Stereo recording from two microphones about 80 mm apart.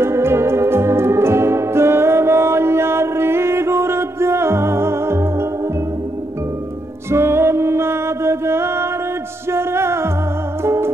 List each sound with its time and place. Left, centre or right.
0.0 s organ: right
7.1 s music: right